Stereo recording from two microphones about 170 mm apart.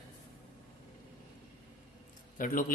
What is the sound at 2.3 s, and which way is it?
Speech, 55° left (ahead or behind).